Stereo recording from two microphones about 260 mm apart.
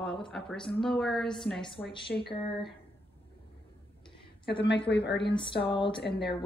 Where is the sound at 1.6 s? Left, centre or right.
Centre.